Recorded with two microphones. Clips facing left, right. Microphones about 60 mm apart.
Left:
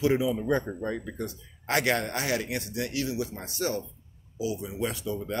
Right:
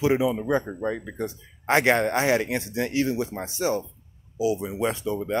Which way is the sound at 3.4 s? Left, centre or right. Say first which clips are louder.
Right 5 dB; right.